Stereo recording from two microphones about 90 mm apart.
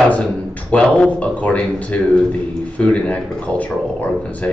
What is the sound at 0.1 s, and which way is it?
A man's voice, 15° left (ahead or behind).